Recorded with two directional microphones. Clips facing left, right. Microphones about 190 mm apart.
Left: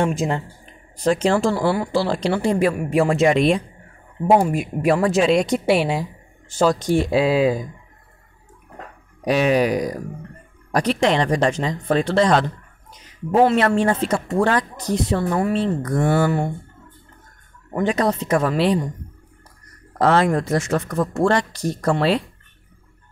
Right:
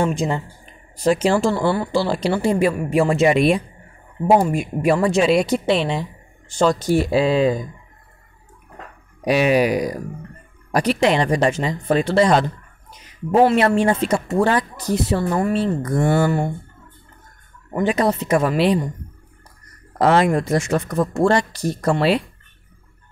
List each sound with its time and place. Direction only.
0.0 s speech: centre (ahead or behind)
5.7 s a woman's voice: 10° left (ahead or behind)
9.2 s speech: 10° right (ahead or behind)
17.8 s speech: 5° right (ahead or behind)
19.9 s speech: 15° right (ahead or behind)